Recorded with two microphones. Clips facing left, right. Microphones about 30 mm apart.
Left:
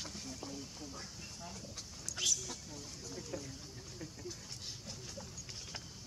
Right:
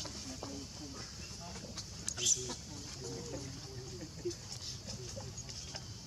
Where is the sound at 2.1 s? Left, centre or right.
Right.